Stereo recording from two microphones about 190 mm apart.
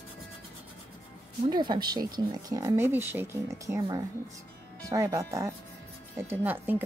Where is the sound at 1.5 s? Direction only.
25° right (ahead or behind).